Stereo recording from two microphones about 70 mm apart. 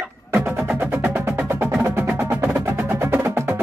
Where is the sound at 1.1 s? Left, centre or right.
Right.